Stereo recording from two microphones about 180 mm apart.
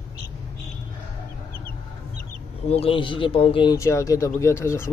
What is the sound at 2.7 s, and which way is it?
A man's voice, 30° left (ahead or behind).